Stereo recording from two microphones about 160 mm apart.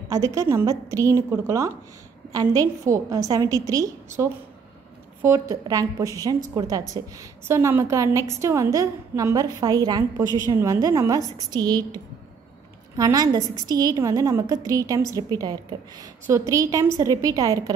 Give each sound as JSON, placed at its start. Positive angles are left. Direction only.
{"t": 0.1, "sound": "a woman's voice", "side_deg": -20}
{"t": 5.2, "sound": "a woman's voice", "side_deg": -15}